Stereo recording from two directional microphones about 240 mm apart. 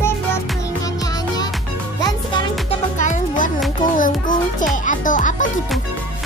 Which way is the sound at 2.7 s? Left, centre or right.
Left.